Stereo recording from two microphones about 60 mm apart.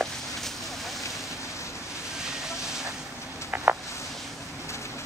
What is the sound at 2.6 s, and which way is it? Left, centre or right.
Vehicle, centre.